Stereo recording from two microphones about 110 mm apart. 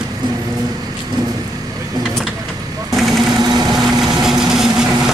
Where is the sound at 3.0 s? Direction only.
Centre (ahead or behind).